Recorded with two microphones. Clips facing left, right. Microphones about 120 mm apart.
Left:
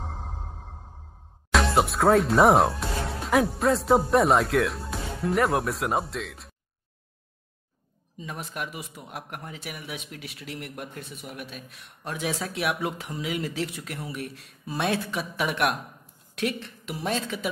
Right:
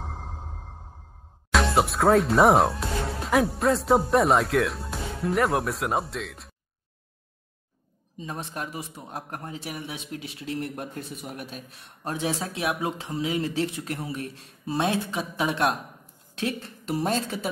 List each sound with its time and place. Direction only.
1.5 s speech: centre (ahead or behind)
8.2 s a man's voice: 30° right (ahead or behind)